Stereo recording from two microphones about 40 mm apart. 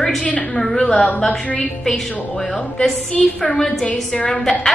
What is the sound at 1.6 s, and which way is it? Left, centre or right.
A woman's voice, centre.